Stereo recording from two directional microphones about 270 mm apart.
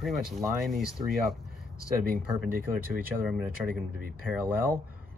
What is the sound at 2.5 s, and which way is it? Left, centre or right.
Speech, right.